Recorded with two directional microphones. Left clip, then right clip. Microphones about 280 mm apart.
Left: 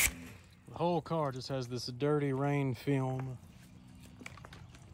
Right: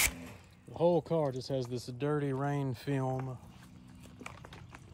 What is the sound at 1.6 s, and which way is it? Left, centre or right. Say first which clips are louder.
Speech: right 1 dB; left.